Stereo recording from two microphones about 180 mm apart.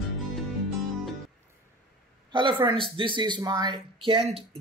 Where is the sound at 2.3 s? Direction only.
25° right (ahead or behind).